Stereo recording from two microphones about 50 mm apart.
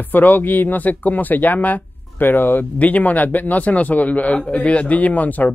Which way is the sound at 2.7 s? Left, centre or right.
Left.